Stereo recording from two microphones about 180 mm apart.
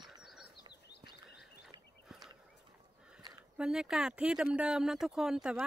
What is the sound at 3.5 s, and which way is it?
Speech, 5° right (ahead or behind).